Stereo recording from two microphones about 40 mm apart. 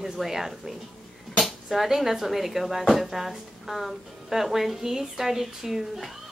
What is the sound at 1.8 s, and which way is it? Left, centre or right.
Speech, centre.